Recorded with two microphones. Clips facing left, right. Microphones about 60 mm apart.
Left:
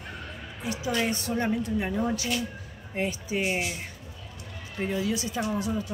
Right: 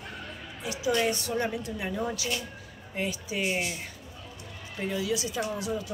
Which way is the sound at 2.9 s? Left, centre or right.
Left.